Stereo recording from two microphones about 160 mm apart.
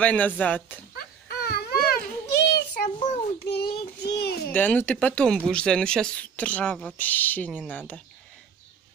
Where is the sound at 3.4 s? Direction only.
90° left.